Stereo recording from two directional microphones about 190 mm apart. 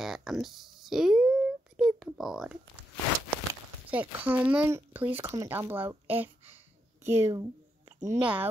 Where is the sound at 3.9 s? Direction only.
10° right (ahead or behind).